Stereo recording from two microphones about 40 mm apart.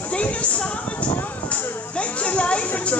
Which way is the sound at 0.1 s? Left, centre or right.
Left.